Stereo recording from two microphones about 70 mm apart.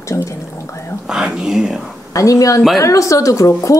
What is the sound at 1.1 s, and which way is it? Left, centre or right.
Speech, centre.